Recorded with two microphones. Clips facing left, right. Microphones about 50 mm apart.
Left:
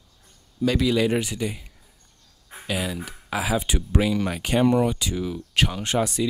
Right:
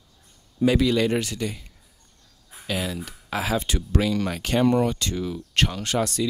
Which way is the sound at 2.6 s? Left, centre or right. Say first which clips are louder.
Even; centre.